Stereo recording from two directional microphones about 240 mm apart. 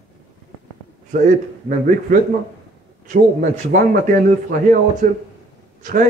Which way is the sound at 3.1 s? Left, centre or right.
Right.